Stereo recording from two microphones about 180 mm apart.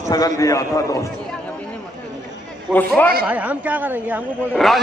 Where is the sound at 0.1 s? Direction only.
20° left (ahead or behind).